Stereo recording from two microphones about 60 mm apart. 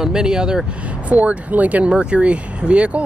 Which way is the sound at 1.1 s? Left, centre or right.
Right.